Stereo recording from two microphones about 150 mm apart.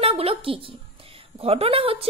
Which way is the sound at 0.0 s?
40° right (ahead or behind).